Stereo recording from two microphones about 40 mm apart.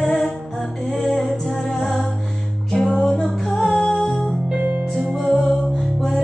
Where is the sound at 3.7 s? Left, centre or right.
Left.